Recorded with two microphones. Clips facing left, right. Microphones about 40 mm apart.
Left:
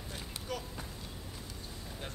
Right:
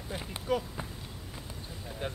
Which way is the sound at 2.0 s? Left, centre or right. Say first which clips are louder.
Right 9 dB; right.